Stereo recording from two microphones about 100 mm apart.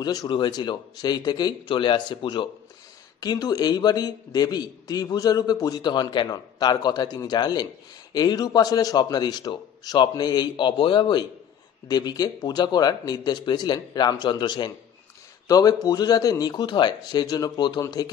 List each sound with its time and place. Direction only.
0.0 s a man's voice: 45° left (ahead or behind)
11.9 s a man's voice: 40° left (ahead or behind)
15.4 s speech: 40° left (ahead or behind)